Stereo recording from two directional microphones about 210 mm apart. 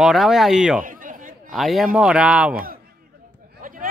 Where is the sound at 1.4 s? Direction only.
Centre (ahead or behind).